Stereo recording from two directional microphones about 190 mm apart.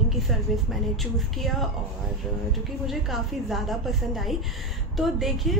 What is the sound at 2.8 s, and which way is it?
A woman's voice, centre (ahead or behind).